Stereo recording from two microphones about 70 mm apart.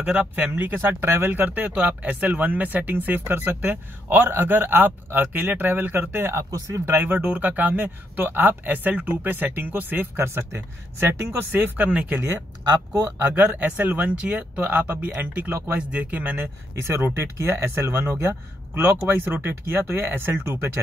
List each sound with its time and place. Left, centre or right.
0.0 s speech: centre
0.7 s speech: right
6.3 s speech: right
6.9 s speech: right
13.3 s speech: centre
16.8 s speech: right